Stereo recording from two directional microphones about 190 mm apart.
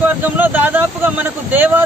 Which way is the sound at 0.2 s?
10° right (ahead or behind).